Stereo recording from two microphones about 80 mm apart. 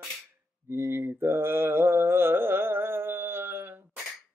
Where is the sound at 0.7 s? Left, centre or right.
Right.